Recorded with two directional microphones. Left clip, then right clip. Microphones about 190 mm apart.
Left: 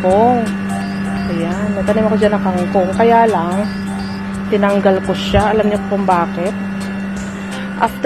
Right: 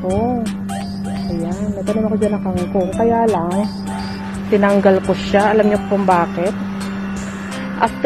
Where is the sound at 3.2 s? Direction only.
Centre (ahead or behind).